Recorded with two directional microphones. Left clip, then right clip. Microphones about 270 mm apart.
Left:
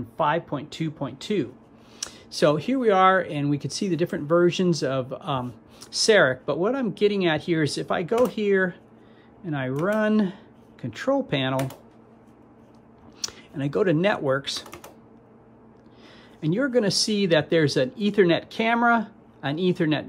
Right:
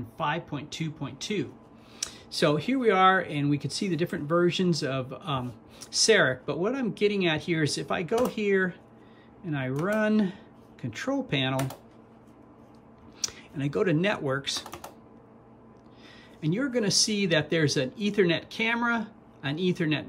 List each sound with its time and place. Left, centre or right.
0.2 s speech: right
2.4 s speech: right
4.3 s speech: centre
5.1 s speech: right
8.5 s speech: centre
9.4 s speech: right
13.6 s speech: right
14.1 s speech: centre
14.4 s speech: right
16.3 s speech: right